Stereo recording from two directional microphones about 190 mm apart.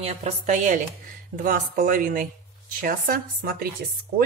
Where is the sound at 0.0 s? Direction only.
35° right (ahead or behind).